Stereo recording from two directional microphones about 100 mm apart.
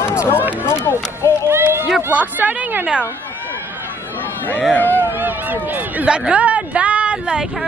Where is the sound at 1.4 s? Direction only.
25° right (ahead or behind).